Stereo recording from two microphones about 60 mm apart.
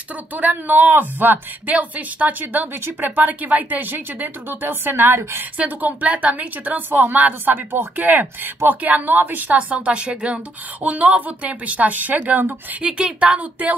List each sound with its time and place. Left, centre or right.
0.1 s speech: right
12.8 s speech: centre